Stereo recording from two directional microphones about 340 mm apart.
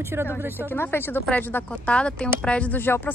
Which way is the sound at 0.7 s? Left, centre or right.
Centre.